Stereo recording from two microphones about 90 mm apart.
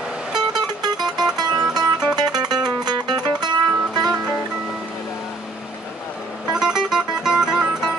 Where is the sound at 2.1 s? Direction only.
50° right (ahead or behind).